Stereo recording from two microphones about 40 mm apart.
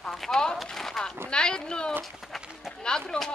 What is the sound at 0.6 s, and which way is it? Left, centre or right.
Speech, centre.